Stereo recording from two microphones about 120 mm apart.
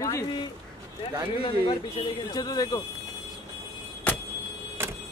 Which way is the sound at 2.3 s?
35° left (ahead or behind).